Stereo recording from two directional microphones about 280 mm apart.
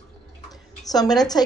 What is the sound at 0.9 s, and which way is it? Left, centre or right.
Speech, centre.